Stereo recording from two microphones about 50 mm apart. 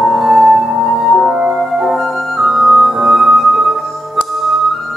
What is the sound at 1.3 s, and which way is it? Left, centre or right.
Music, right.